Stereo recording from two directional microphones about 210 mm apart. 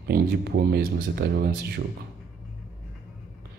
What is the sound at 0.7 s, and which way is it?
Speech, 45° right (ahead or behind).